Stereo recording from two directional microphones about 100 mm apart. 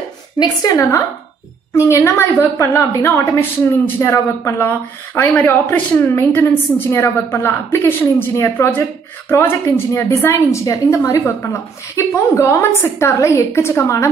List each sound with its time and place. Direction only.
1.8 s speech: 30° left (ahead or behind)